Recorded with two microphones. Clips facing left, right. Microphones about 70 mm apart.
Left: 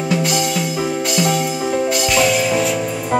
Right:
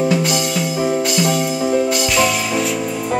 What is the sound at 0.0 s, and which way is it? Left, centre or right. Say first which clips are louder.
Music: right 1 dB; centre.